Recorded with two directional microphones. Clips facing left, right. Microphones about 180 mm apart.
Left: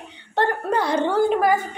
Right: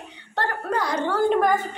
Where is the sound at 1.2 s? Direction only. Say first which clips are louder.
Left 1 dB; 5° left (ahead or behind).